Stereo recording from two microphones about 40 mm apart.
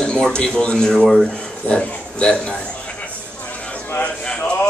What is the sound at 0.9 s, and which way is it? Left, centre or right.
Speech, centre.